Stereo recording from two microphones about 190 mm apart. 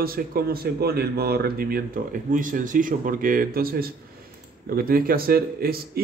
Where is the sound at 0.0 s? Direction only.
50° right (ahead or behind).